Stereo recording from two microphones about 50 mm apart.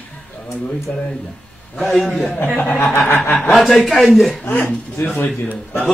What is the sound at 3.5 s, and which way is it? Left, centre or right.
Speech, centre.